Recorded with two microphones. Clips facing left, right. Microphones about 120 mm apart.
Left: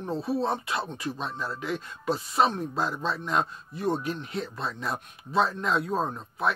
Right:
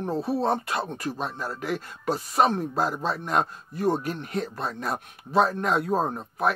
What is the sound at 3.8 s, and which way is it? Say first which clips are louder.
Speech: right 3 dB; 5° right (ahead or behind).